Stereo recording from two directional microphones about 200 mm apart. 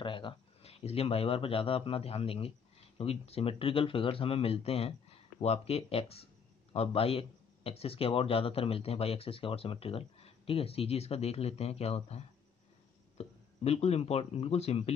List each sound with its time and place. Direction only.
0.0 s speech: 25° left (ahead or behind)
13.2 s speech: 30° left (ahead or behind)